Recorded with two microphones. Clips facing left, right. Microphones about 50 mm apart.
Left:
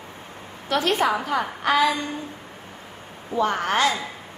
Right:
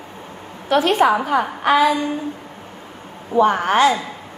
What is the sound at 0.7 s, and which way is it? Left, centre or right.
Speech, right.